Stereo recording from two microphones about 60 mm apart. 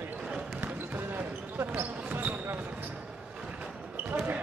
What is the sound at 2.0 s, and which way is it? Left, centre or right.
Basketball bounce, right.